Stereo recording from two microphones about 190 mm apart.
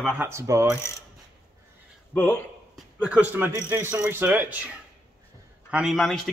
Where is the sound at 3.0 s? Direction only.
10° right (ahead or behind).